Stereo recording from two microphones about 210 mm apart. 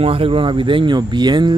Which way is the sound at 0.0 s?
25° right (ahead or behind).